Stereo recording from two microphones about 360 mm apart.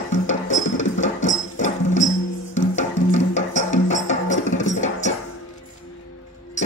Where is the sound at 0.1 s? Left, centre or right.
Centre.